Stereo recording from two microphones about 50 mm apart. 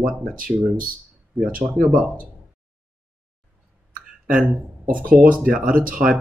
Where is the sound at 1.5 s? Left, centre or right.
Right.